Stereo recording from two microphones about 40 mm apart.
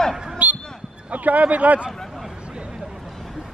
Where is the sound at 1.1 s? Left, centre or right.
Right.